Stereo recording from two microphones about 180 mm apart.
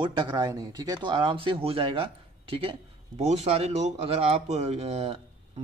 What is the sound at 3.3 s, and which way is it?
A man's voice, 35° right (ahead or behind).